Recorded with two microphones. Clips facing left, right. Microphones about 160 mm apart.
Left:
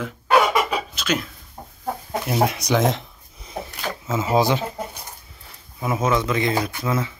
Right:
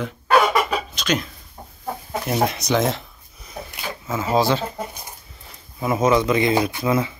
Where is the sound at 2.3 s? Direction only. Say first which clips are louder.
Even; 10° left (ahead or behind).